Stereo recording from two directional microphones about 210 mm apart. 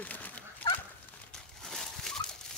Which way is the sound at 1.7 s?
Centre (ahead or behind).